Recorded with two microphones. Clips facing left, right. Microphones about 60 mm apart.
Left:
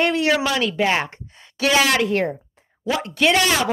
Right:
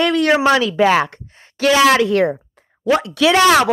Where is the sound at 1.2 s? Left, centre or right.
Right.